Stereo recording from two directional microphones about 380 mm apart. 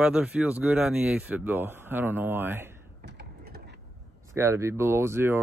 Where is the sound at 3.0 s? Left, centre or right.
Right.